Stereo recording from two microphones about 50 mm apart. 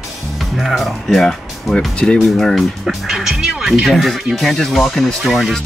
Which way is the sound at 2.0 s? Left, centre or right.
Left.